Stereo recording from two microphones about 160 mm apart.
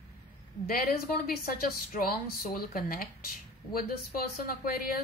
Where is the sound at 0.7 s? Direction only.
65° left (ahead or behind).